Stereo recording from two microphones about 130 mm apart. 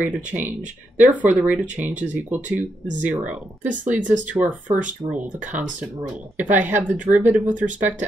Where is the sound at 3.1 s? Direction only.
10° right (ahead or behind).